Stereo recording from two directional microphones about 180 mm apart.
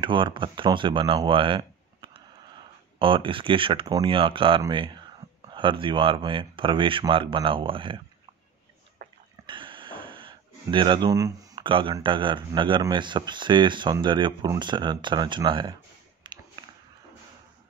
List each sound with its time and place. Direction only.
0.0 s speech: 25° right (ahead or behind)
9.5 s speech: 30° right (ahead or behind)
16.2 s a sound: 25° right (ahead or behind)